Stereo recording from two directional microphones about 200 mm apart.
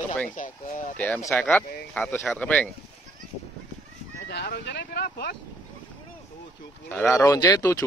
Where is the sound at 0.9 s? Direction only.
10° left (ahead or behind).